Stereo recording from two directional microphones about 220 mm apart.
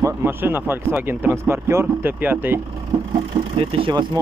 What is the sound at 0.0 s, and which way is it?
Speech, 10° right (ahead or behind).